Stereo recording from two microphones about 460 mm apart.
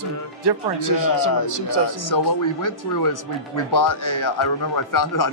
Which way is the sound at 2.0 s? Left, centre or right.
Left.